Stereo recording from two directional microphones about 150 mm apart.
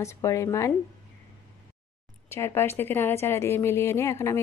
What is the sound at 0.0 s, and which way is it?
Speech, 20° left (ahead or behind).